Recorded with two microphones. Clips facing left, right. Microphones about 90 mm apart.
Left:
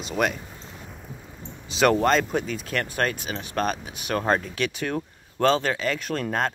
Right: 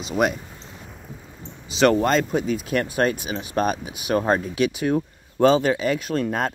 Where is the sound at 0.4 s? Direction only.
Centre (ahead or behind).